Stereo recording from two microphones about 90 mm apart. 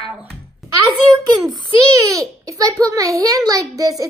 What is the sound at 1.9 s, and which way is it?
A child's voice, 40° right (ahead or behind).